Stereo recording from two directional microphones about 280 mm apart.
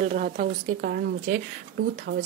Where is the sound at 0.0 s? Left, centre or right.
Right.